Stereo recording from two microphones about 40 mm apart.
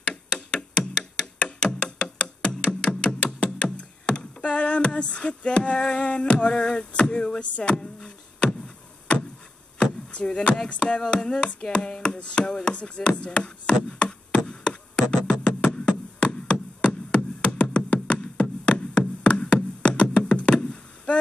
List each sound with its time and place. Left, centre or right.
0.3 s music: left
5.8 s chopping: centre
6.0 s chopping: left
10.1 s chopping: left
12.8 s speech: left
14.5 s a sound: left
15.4 s music: left